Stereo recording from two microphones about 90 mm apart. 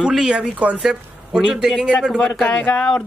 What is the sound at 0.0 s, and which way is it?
A man's voice, 5° right (ahead or behind).